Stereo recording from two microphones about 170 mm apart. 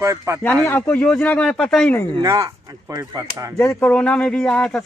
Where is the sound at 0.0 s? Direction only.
15° right (ahead or behind).